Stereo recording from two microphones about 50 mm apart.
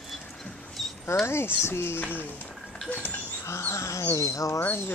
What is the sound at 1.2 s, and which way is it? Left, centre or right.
Speech, left.